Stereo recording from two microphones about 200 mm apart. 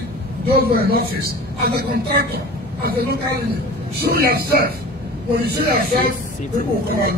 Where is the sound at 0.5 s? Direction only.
50° right (ahead or behind).